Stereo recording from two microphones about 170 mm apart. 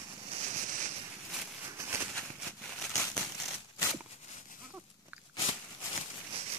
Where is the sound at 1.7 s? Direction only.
15° right (ahead or behind).